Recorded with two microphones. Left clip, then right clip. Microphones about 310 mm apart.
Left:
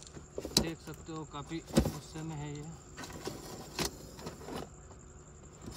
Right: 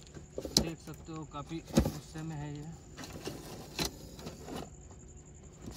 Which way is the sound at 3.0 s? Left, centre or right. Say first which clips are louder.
Left 1 dB; centre.